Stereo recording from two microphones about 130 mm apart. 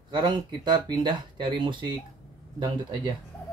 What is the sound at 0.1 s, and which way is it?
Speech, 35° right (ahead or behind).